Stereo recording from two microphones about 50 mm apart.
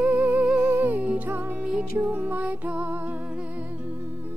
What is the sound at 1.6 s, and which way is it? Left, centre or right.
Music, centre.